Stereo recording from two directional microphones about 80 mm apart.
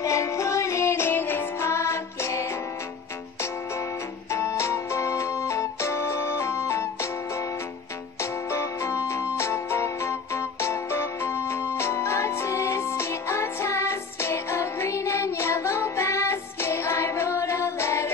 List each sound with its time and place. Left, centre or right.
0.0 s music: left
4.3 s music: left